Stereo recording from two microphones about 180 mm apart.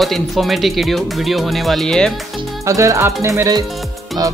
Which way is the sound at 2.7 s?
15° right (ahead or behind).